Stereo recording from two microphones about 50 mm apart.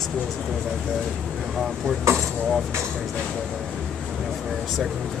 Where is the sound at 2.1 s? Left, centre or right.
Right.